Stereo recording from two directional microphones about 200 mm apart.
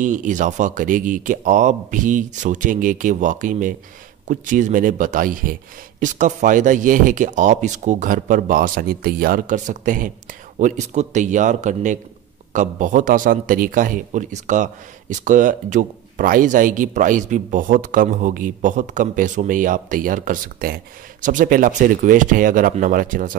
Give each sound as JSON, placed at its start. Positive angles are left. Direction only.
{"t": 0.0, "sound": "a man's voice", "side_deg": -40}